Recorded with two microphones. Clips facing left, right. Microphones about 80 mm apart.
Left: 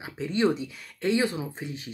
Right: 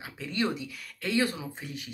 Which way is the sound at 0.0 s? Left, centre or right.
Left.